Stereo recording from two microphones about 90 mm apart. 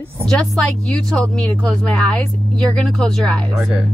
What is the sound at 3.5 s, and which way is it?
Speech, 5° right (ahead or behind).